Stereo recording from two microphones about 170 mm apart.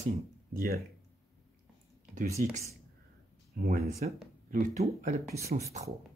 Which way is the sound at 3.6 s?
50° right (ahead or behind).